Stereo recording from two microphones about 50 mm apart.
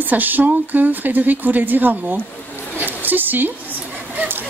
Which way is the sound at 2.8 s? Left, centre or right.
Right.